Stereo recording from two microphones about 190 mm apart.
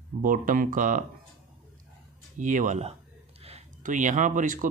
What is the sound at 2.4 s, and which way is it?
Speech, 40° right (ahead or behind).